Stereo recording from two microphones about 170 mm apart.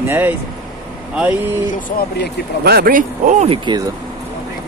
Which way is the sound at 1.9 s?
50° left (ahead or behind).